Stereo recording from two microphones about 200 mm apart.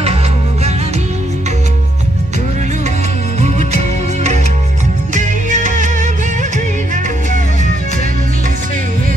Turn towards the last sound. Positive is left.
turn(degrees=-40)  # may be behind; listen again after turning